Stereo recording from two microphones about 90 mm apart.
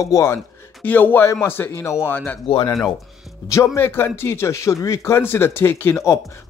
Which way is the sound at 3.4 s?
30° left (ahead or behind).